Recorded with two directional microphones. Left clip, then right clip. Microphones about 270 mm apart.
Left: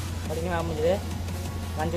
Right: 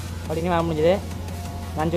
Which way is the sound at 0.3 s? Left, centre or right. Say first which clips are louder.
Right 7 dB; centre.